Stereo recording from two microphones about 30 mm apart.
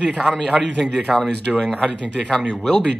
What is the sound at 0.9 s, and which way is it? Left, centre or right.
Speech, right.